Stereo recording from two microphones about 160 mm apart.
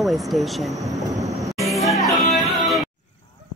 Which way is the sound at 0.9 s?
20° right (ahead or behind).